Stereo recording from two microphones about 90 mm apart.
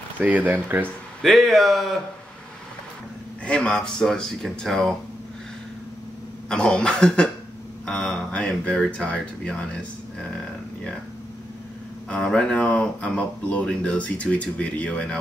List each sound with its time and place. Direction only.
0.2 s speech: 15° right (ahead or behind)
1.2 s speech: centre (ahead or behind)
3.4 s speech: 10° left (ahead or behind)
6.5 s speech: 10° left (ahead or behind)
12.1 s speech: 10° left (ahead or behind)